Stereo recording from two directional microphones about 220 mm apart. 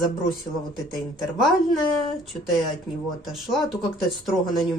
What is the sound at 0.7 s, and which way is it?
Speech, centre (ahead or behind).